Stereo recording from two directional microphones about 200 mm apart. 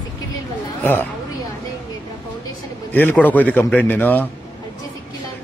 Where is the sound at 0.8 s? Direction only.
10° left (ahead or behind).